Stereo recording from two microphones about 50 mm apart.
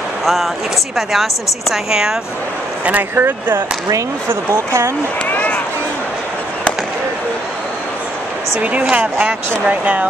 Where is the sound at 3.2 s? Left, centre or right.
Right.